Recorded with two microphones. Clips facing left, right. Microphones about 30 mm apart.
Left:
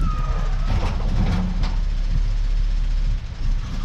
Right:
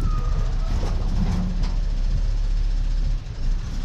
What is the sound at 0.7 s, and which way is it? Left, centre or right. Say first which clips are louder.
Vehicle: left 5 dB; left.